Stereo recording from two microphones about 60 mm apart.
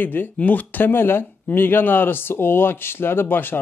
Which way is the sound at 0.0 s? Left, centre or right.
Left.